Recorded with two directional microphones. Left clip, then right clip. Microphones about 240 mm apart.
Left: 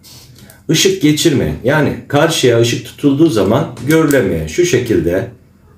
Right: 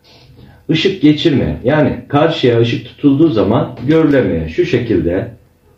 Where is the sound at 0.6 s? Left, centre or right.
Centre.